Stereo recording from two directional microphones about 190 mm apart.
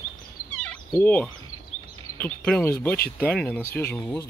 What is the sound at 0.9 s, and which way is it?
Speech, 10° left (ahead or behind).